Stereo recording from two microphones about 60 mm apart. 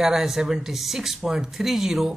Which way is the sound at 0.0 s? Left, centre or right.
Centre.